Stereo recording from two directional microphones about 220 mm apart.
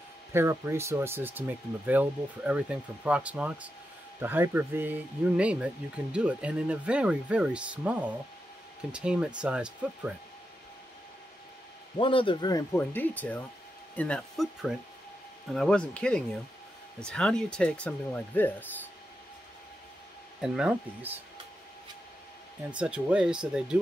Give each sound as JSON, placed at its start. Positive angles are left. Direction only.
{"t": 0.3, "sound": "speech", "side_deg": -10}
{"t": 12.0, "sound": "speech", "side_deg": 25}
{"t": 20.4, "sound": "speech", "side_deg": -5}
{"t": 22.8, "sound": "speech", "side_deg": -5}